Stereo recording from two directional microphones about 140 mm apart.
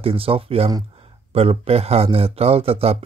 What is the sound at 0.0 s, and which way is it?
Speech, 40° right (ahead or behind).